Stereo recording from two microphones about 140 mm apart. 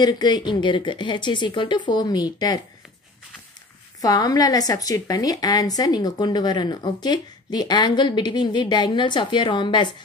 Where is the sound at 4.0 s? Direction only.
25° left (ahead or behind).